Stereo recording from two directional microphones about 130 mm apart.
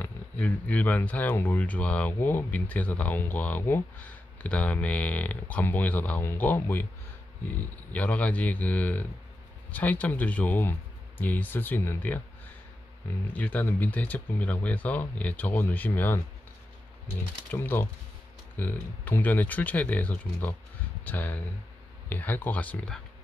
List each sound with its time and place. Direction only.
0.0 s speech: 10° left (ahead or behind)
7.9 s speech: 10° left (ahead or behind)
13.3 s speech: 10° left (ahead or behind)
17.5 s speech: 15° left (ahead or behind)